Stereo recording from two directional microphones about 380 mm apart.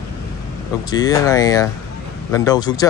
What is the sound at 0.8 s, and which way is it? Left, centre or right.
Speech, centre.